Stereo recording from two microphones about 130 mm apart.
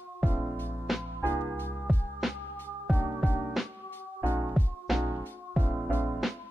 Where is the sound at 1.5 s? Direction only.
15° left (ahead or behind).